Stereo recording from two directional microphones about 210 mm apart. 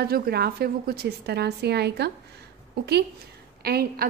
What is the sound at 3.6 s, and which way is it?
Speech, 45° right (ahead or behind).